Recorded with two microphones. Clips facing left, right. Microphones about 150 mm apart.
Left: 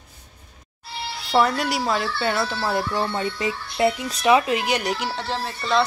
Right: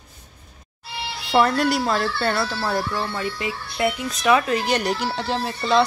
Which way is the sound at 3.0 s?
20° left (ahead or behind).